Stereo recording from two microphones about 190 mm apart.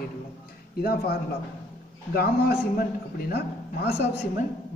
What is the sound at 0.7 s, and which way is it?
A man's voice, 55° left (ahead or behind).